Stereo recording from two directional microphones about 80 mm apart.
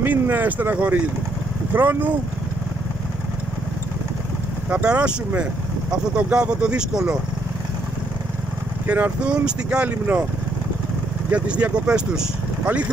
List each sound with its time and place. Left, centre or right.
0.0 s speech: right
4.8 s speech: centre
8.8 s speech: right
11.2 s speech: centre